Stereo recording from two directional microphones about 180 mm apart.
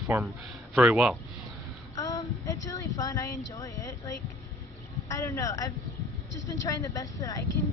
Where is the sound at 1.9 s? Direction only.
20° left (ahead or behind).